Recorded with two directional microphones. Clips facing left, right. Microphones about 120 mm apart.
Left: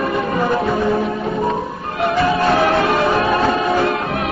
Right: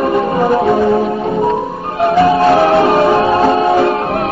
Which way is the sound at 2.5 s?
30° right (ahead or behind).